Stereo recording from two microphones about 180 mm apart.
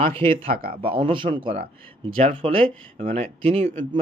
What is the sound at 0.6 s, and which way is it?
Speech, 55° right (ahead or behind).